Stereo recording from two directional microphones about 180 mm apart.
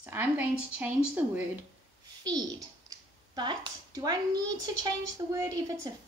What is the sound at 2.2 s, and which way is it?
A woman's voice, 20° right (ahead or behind).